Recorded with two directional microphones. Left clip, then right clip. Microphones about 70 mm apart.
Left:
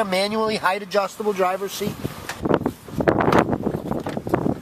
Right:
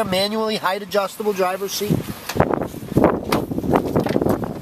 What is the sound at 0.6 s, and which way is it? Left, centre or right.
Speech, centre.